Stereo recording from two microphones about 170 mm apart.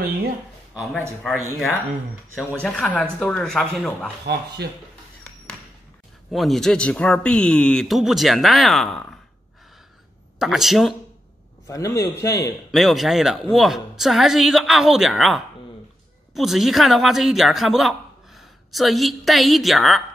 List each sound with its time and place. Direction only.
1.3 s a man's voice: centre (ahead or behind)
2.6 s speech: 10° left (ahead or behind)
4.6 s speech: 75° right (ahead or behind)
6.3 s a man's voice: centre (ahead or behind)
10.4 s a man's voice: centre (ahead or behind)
11.6 s a man's voice: 15° left (ahead or behind)
12.7 s a man's voice: centre (ahead or behind)